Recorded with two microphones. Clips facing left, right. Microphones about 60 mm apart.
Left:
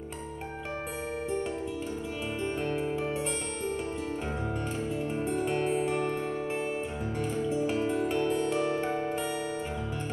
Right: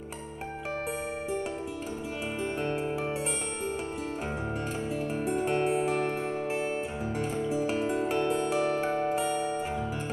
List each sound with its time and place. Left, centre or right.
2.6 s music: centre
5.2 s music: centre
5.6 s music: right; by 9.5 s centre